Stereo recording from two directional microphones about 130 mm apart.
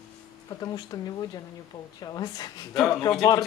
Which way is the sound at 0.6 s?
30° left (ahead or behind).